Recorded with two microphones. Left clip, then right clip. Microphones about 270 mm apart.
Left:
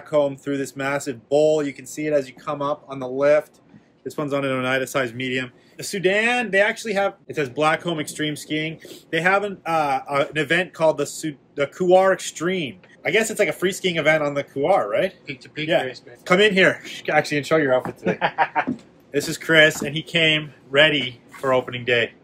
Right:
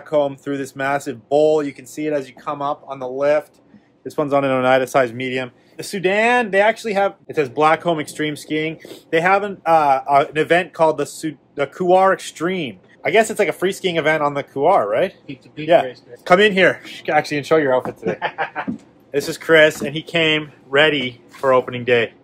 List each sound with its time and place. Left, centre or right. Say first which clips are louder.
0.0 s speech: right 2 dB; centre